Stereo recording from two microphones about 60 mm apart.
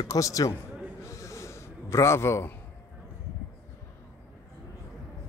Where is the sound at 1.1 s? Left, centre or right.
Left.